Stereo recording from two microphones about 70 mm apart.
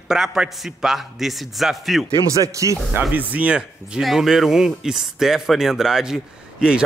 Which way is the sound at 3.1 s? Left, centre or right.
Right.